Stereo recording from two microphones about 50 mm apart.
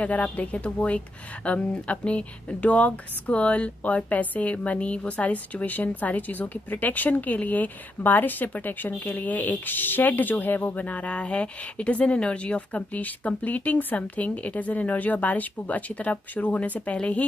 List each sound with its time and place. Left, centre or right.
0.0 s a woman's voice: left